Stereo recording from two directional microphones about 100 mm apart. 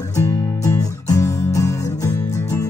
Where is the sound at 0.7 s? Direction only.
35° left (ahead or behind).